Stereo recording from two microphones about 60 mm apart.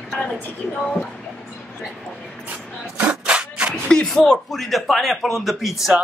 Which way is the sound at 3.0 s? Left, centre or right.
Centre.